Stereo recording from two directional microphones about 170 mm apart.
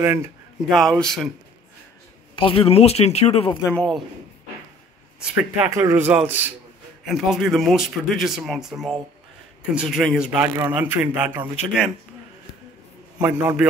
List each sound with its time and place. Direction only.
0.0 s speech: 15° right (ahead or behind)
0.7 s speech: centre (ahead or behind)
2.3 s speech: 30° left (ahead or behind)
3.6 s a man's voice: 5° left (ahead or behind)
5.2 s speech: 5° right (ahead or behind)
5.7 s speech: 15° right (ahead or behind)
13.2 s speech: 10° right (ahead or behind)